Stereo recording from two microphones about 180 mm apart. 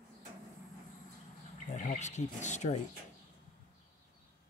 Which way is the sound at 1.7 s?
40° left (ahead or behind).